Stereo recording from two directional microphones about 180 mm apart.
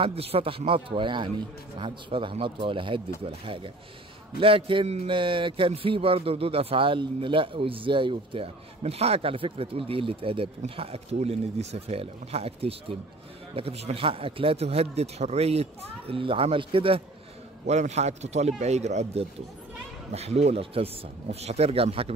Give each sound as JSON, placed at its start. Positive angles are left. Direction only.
{"t": 0.0, "sound": "a man's voice", "side_deg": -35}